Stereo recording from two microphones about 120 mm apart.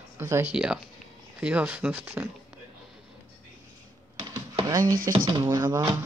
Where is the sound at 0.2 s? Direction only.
20° right (ahead or behind).